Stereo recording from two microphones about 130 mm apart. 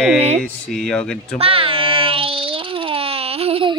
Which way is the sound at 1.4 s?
45° right (ahead or behind).